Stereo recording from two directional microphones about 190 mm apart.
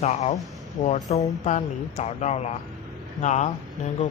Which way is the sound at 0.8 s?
35° left (ahead or behind).